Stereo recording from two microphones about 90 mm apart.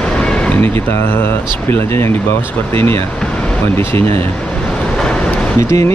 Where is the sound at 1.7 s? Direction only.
30° left (ahead or behind).